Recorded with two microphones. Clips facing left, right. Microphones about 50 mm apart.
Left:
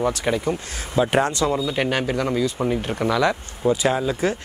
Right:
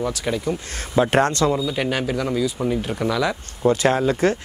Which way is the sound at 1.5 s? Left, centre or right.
Centre.